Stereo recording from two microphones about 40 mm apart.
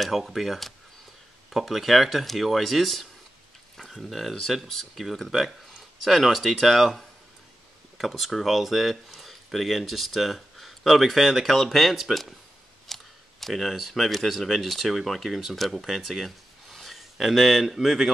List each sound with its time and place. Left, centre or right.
0.0 s speech: centre